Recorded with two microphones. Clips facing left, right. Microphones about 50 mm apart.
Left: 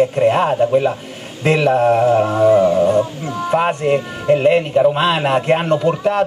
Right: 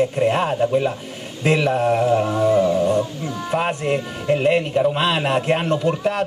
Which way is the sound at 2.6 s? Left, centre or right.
Left.